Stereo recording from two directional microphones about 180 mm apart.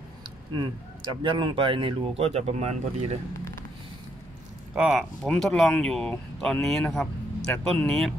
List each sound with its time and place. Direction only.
0.6 s speech: 30° right (ahead or behind)
4.7 s speech: centre (ahead or behind)